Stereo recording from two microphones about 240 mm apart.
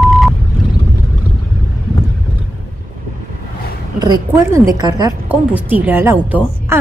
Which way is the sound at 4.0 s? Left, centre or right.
Centre.